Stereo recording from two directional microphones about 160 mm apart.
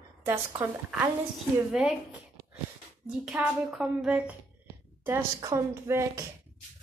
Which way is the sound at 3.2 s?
5° right (ahead or behind).